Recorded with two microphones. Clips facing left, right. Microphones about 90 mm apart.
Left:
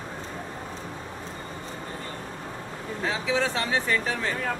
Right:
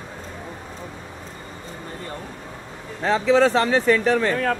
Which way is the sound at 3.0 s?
60° right (ahead or behind).